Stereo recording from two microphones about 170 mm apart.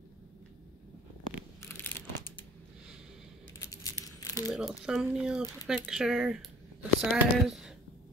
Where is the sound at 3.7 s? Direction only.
20° left (ahead or behind).